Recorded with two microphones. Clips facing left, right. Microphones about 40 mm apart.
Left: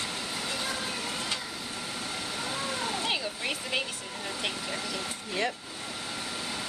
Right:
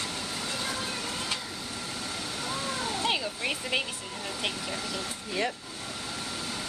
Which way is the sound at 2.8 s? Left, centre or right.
Centre.